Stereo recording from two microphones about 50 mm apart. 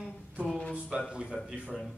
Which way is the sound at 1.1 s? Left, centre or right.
Right.